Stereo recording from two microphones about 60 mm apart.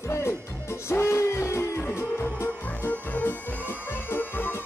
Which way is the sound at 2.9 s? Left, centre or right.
Left.